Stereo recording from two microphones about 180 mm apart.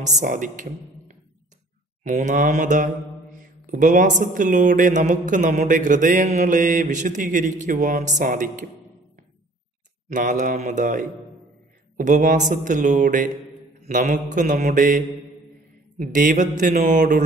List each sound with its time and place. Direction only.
0.0 s speech: 45° right (ahead or behind)
10.0 s speech: 45° right (ahead or behind)
16.0 s speech: 45° right (ahead or behind)